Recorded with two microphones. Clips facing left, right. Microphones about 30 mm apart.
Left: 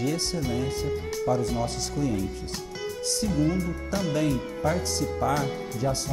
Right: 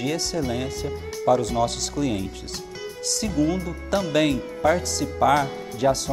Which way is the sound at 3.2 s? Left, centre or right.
Right.